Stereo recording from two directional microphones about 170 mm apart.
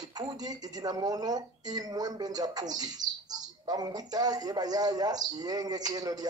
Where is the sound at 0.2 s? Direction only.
25° right (ahead or behind).